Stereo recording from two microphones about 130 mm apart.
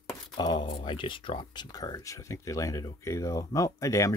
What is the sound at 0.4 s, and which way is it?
Speech, 35° left (ahead or behind).